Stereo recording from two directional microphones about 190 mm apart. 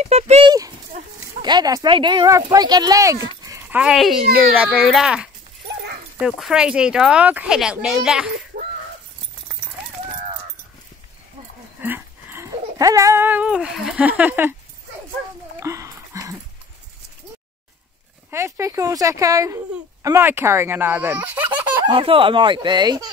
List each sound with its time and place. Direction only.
0.0 s speech: 35° right (ahead or behind)
1.4 s speech: 20° right (ahead or behind)
3.8 s speech: centre (ahead or behind)
5.7 s dog: 60° right (ahead or behind)
6.1 s speech: 5° right (ahead or behind)
8.5 s a sound: 50° right (ahead or behind)
11.8 s speech: 10° right (ahead or behind)
15.6 s a sound: 15° right (ahead or behind)
18.3 s speech: 15° right (ahead or behind)
21.8 s speech: 25° right (ahead or behind)